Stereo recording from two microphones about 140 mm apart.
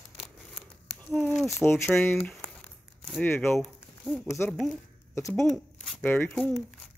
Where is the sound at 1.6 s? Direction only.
15° left (ahead or behind).